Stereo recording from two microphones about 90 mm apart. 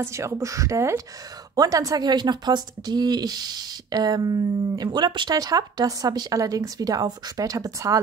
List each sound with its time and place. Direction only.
0.0 s a woman's voice: 35° right (ahead or behind)
4.9 s speech: 60° right (ahead or behind); by 8.0 s 40° right (ahead or behind)